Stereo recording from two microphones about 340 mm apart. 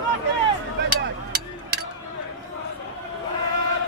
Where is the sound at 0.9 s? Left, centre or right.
Right.